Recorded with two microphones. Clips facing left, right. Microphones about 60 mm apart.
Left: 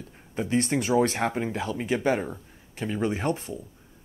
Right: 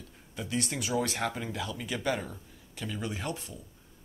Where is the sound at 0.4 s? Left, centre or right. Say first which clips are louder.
Left 8 dB; left.